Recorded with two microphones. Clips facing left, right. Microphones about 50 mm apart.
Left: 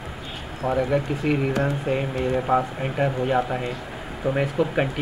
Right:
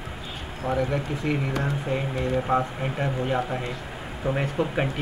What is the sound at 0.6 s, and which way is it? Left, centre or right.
Speech, centre.